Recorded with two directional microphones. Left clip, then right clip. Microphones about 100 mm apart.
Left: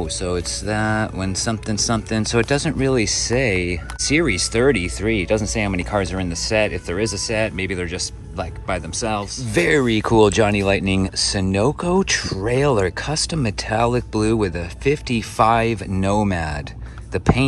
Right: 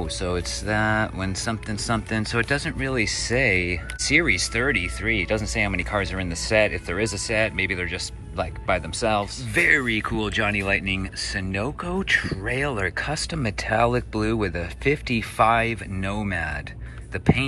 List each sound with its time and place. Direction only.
0.0 s speech: 20° left (ahead or behind)
9.5 s speech: 35° left (ahead or behind)